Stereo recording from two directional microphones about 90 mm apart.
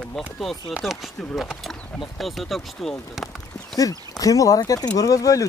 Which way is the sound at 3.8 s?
40° left (ahead or behind).